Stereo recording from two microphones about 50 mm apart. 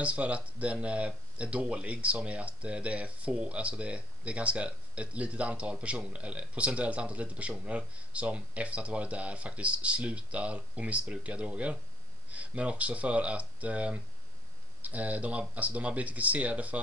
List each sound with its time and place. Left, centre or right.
0.0 s speech: right